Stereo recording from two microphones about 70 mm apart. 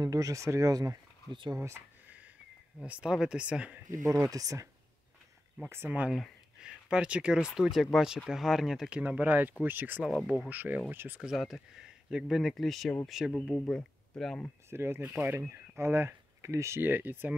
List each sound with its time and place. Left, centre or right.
0.0 s speech: right
2.0 s a sound: right
2.8 s speech: centre
4.2 s speech: right
5.7 s speech: right
6.6 s speech: centre
10.0 s speech: centre
10.5 s speech: right
11.1 s speech: centre
13.7 s speech: centre
14.7 s speech: right